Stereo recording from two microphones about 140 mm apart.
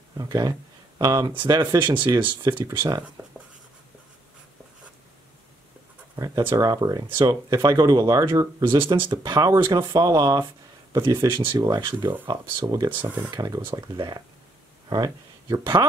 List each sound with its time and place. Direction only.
0.2 s speech: 25° right (ahead or behind)
6.1 s speech: 25° right (ahead or behind)